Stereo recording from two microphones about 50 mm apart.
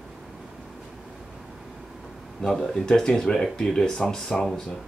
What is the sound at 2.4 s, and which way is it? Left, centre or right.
Speech, centre.